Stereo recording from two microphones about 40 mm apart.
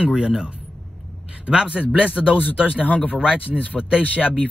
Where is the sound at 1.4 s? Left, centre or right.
Right.